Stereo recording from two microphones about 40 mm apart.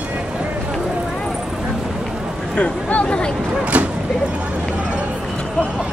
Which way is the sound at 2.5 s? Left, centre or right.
Left.